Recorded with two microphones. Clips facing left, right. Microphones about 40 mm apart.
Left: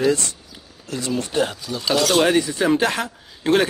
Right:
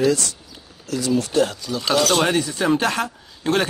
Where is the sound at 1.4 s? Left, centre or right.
Centre.